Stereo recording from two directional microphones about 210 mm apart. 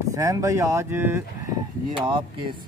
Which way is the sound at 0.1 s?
15° right (ahead or behind).